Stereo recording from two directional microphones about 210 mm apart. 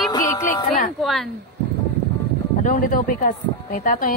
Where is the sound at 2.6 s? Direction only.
40° left (ahead or behind).